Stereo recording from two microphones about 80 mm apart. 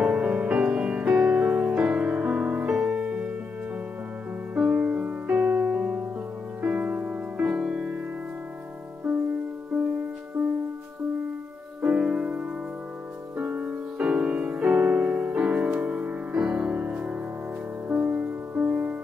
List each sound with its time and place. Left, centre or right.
0.0 s music: centre
4.6 s music: centre
11.8 s music: centre